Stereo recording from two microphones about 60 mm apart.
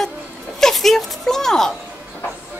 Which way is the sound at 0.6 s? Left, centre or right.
Centre.